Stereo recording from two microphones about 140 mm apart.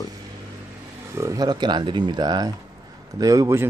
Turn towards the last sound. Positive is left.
turn(degrees=-20)  # may be behind; listen again after turning